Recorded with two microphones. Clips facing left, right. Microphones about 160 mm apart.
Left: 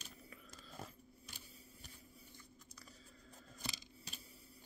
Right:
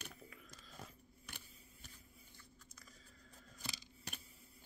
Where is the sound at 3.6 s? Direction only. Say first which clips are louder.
Left 2 dB; 20° left (ahead or behind).